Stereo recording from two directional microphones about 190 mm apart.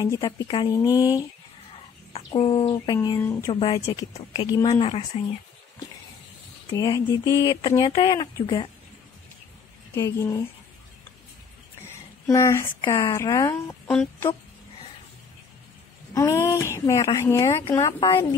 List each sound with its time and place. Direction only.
0.0 s speech: 20° left (ahead or behind)
1.7 s speech: 30° left (ahead or behind); by 3.5 s 15° left (ahead or behind)
3.5 s speech: 25° left (ahead or behind)
6.7 s speech: 20° left (ahead or behind)
9.9 s speech: 15° left (ahead or behind)
11.8 s speech: 15° left (ahead or behind)
16.2 s speech: 15° left (ahead or behind)